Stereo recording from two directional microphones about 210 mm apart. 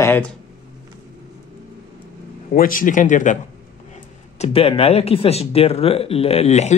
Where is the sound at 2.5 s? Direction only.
40° left (ahead or behind).